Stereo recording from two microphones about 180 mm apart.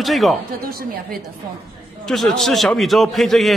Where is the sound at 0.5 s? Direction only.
55° right (ahead or behind).